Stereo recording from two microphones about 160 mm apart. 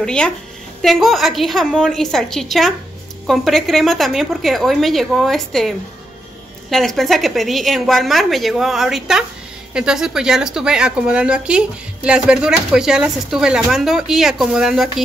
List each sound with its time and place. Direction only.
0.0 s a woman's voice: 5° left (ahead or behind)